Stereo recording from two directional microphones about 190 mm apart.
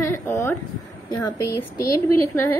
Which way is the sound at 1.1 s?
15° left (ahead or behind).